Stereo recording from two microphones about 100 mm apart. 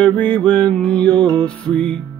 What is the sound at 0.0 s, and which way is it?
Music, 15° left (ahead or behind).